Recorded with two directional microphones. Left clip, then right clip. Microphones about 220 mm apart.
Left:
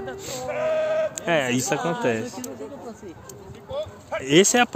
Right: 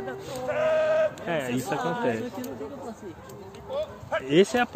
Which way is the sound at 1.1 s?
45° left (ahead or behind).